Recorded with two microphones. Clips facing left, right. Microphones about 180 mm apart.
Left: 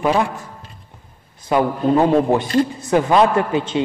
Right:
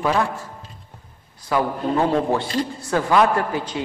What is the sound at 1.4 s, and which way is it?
A man's voice, 20° left (ahead or behind).